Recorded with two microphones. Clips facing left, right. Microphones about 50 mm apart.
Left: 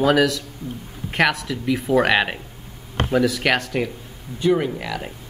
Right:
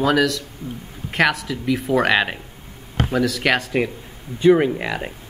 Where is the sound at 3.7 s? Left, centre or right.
Centre.